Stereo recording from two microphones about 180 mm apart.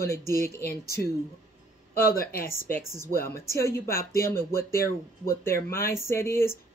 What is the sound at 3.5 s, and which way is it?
Speech, 15° left (ahead or behind).